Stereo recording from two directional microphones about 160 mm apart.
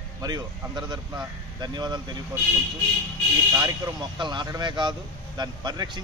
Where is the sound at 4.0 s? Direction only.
30° right (ahead or behind).